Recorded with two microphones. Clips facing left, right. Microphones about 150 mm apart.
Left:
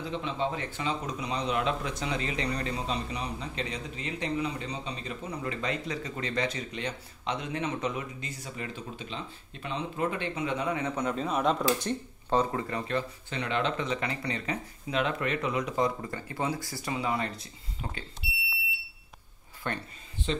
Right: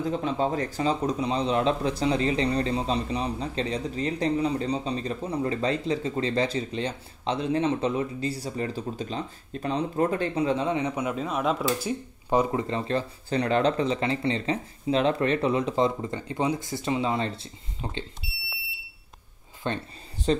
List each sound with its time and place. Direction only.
0.0 s speech: 45° right (ahead or behind)
10.8 s speech: 10° right (ahead or behind)
12.6 s speech: 30° right (ahead or behind)
19.6 s speech: 20° right (ahead or behind)
20.3 s speech: 40° right (ahead or behind)